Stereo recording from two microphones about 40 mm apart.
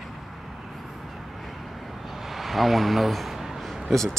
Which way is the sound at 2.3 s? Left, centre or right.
Centre.